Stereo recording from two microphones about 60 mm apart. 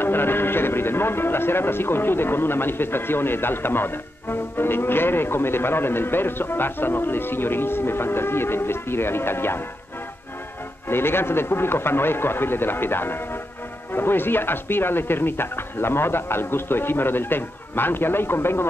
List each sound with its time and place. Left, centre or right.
0.0 s speech: left
10.9 s speech: left